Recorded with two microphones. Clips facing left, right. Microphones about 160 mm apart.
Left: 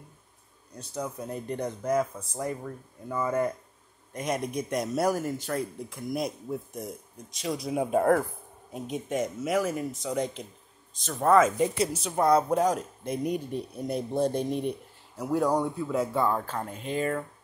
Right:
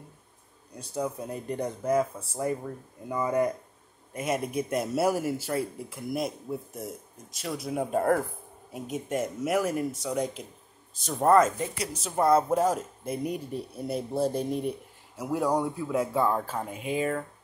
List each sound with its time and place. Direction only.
0.7 s speech: 10° right (ahead or behind)
2.6 s speech: 15° right (ahead or behind)
4.1 s speech: 5° right (ahead or behind)
11.3 s speech: 10° left (ahead or behind)
11.9 s speech: centre (ahead or behind)